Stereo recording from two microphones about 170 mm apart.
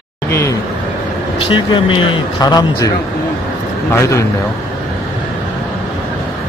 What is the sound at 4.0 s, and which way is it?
Speech, 15° left (ahead or behind).